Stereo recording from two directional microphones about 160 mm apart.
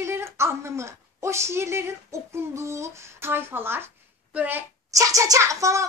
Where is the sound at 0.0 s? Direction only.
15° right (ahead or behind).